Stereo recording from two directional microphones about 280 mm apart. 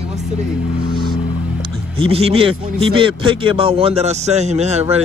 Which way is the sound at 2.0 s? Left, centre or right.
Centre.